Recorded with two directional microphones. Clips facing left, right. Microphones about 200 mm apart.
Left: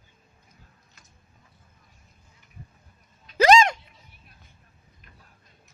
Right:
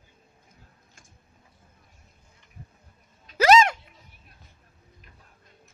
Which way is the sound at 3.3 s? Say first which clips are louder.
Left 1 dB; 5° right (ahead or behind).